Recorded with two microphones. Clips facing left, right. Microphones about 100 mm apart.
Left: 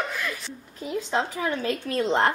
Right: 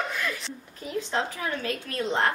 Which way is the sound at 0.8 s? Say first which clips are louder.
Left 2 dB; 10° left (ahead or behind).